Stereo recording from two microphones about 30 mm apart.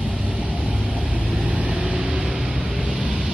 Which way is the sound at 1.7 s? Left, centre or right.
Right.